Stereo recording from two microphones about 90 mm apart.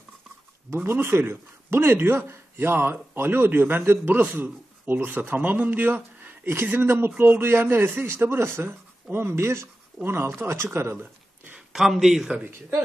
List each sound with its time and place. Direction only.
0.7 s speech: 25° right (ahead or behind)
11.5 s a man's voice: 5° right (ahead or behind)